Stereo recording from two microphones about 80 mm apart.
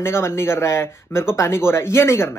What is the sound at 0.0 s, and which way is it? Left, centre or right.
Speech, left.